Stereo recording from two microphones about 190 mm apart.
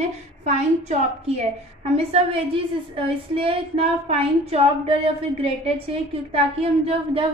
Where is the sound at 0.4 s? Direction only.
35° right (ahead or behind).